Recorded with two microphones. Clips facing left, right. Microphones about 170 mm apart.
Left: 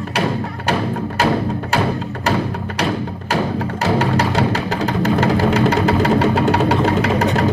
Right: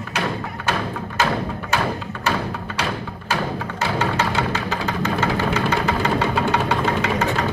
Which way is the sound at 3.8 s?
35° left (ahead or behind).